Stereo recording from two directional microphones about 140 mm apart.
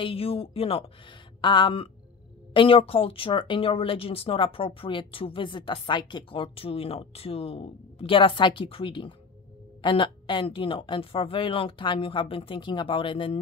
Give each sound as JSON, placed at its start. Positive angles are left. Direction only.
{"t": 0.0, "sound": "speech", "side_deg": 45}